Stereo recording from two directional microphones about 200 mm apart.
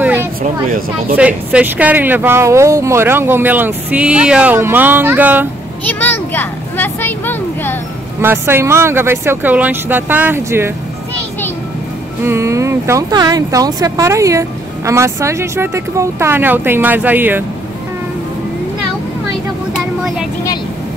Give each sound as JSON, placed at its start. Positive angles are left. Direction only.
{"t": 0.0, "sound": "a sound", "side_deg": -10}
{"t": 0.4, "sound": "speech", "side_deg": -45}
{"t": 1.1, "sound": "speech", "side_deg": -5}
{"t": 5.9, "sound": "a child's voice", "side_deg": 10}
{"t": 8.2, "sound": "speech", "side_deg": -10}
{"t": 12.3, "sound": "speech", "side_deg": -15}